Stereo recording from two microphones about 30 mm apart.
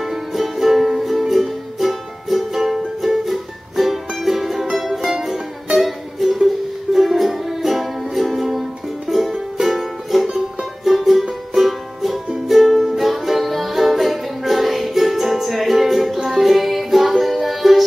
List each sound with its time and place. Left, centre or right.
0.0 s music: centre
5.8 s music: centre
10.2 s music: centre
10.9 s music: centre